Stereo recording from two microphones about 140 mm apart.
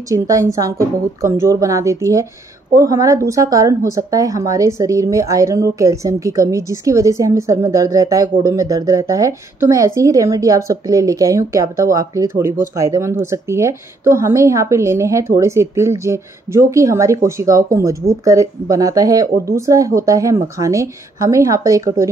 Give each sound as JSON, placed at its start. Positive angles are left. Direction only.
{"t": 0.1, "sound": "a woman's voice", "side_deg": -25}